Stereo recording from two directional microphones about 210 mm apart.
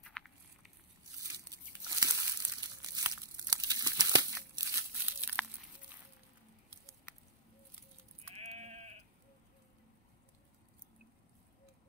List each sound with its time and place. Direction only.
0.0 s a sound: centre (ahead or behind)
1.2 s crumpling: 15° right (ahead or behind)
8.4 s sheep: 30° right (ahead or behind)